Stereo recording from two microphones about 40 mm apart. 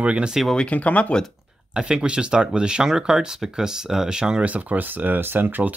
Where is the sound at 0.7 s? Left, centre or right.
Left.